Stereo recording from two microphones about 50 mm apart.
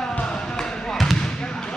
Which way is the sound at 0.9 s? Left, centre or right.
Centre.